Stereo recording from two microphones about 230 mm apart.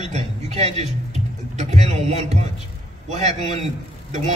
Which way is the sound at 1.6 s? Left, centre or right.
Right.